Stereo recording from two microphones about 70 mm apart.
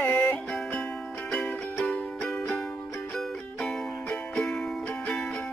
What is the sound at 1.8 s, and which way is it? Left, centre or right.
Music, centre.